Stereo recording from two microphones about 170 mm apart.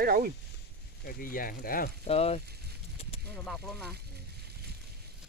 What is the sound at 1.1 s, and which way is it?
Speech, 55° left (ahead or behind).